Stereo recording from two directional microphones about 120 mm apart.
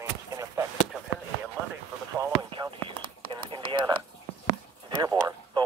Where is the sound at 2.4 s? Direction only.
45° right (ahead or behind).